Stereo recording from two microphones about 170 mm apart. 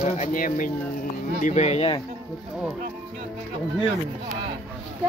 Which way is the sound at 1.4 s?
40° left (ahead or behind).